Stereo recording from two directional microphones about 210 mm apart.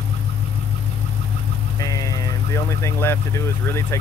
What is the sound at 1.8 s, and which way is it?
Speech, 15° left (ahead or behind).